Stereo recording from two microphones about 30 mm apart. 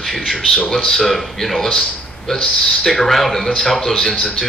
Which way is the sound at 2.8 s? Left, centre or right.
Centre.